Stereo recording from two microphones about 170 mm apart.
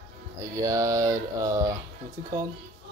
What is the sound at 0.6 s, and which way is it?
Speech, 20° right (ahead or behind).